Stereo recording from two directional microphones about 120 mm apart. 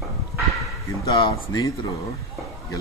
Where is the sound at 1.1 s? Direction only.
30° left (ahead or behind).